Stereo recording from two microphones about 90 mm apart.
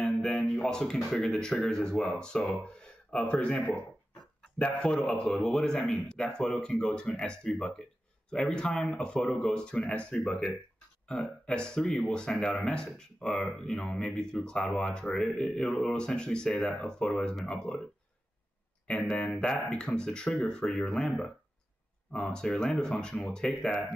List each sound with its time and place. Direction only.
0.0 s a sound: centre (ahead or behind)
0.4 s speech: 5° left (ahead or behind)
18.9 s speech: 5° left (ahead or behind)